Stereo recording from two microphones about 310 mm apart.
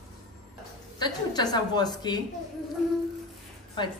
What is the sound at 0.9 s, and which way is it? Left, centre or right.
A woman's voice, centre.